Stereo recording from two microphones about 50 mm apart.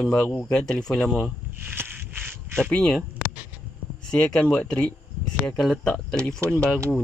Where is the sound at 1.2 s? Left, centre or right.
Right.